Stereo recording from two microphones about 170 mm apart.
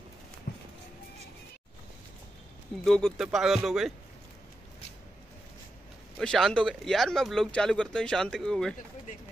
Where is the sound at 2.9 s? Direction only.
5° left (ahead or behind).